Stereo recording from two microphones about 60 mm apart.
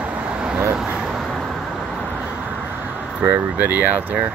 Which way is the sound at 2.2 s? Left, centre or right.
Right.